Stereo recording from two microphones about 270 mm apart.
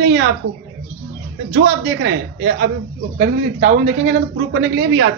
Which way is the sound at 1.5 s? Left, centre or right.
Right.